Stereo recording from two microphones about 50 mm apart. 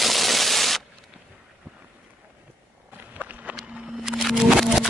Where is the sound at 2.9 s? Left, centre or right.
Right.